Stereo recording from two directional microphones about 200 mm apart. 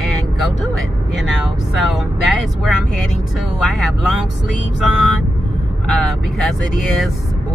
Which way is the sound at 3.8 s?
Centre (ahead or behind).